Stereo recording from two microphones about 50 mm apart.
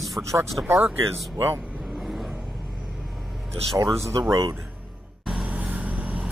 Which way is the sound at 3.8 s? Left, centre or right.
Right.